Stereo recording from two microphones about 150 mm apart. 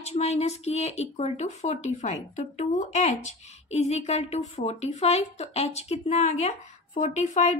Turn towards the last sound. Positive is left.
turn(degrees=50)  # may be behind; listen again after turning